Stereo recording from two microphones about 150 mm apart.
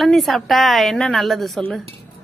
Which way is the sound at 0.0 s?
Centre (ahead or behind).